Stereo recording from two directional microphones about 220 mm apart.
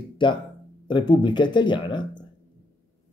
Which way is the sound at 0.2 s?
20° left (ahead or behind).